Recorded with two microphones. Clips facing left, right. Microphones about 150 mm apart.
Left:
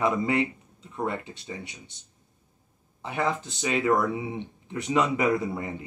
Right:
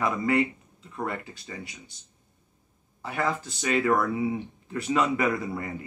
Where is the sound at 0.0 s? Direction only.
20° left (ahead or behind).